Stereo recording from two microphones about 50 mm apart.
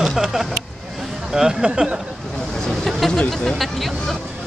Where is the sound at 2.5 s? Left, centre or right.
Centre.